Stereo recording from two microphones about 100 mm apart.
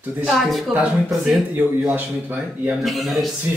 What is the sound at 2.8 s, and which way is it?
Speech, centre (ahead or behind).